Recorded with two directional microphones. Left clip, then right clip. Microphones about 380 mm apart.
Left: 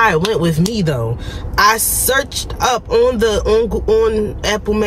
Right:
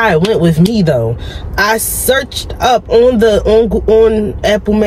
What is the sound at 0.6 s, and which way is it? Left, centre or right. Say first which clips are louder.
Speech: right 7 dB; centre.